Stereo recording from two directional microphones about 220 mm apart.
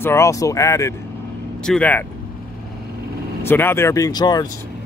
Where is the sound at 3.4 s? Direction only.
10° left (ahead or behind).